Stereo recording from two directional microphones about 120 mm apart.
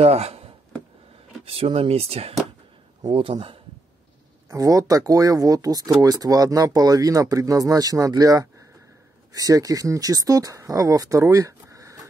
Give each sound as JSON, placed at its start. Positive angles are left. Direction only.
{"t": 0.0, "sound": "speech", "side_deg": -60}
{"t": 3.1, "sound": "speech", "side_deg": -45}
{"t": 4.5, "sound": "speech", "side_deg": -30}